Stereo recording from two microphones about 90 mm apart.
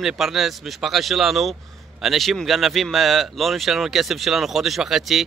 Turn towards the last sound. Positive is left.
turn(degrees=-5)  # may be behind; listen again after turning